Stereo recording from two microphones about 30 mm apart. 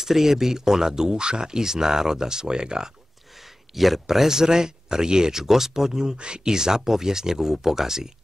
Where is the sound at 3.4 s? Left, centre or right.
Centre.